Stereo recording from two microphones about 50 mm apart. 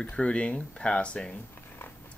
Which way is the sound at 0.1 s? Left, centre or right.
Left.